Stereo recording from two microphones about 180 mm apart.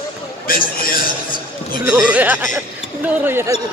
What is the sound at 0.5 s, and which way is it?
Speech, 50° left (ahead or behind).